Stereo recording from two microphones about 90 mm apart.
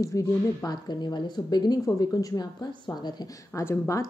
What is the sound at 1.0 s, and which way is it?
Speech, 55° left (ahead or behind).